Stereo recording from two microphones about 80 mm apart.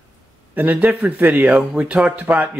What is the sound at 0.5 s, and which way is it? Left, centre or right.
Speech, right.